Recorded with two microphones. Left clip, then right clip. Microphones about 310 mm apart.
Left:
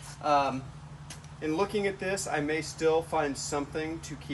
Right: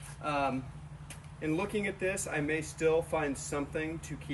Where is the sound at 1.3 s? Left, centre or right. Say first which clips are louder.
Left 4 dB; centre.